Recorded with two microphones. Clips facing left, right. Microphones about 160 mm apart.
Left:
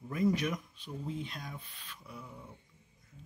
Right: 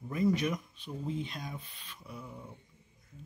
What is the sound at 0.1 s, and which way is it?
Speech, centre (ahead or behind).